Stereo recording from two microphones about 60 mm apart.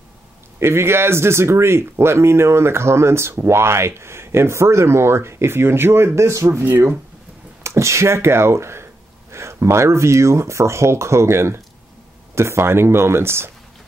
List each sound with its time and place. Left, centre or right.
0.6 s speech: right
7.6 s speech: right